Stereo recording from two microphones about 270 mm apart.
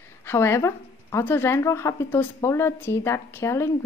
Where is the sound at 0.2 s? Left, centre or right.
Centre.